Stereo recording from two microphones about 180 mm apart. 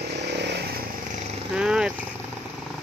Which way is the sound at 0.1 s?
70° right (ahead or behind).